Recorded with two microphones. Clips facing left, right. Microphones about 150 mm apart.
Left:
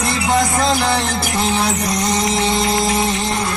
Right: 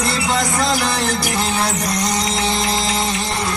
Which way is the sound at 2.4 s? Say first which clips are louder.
Left 3 dB; 20° left (ahead or behind).